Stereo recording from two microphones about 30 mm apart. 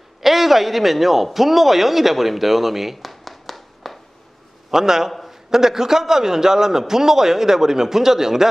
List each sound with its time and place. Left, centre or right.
0.2 s a man's voice: centre
4.6 s a man's voice: centre